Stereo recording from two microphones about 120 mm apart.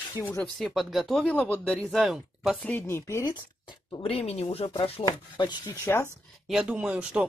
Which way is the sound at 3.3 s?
40° left (ahead or behind).